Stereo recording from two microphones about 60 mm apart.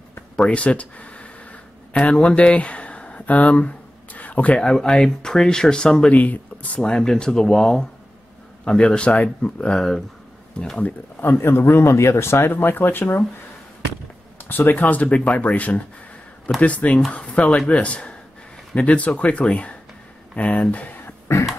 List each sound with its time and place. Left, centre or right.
0.4 s a sound: left
4.6 s speech: centre
6.1 s speech: left
6.9 s speech: centre
10.8 s speech: left
14.7 s speech: left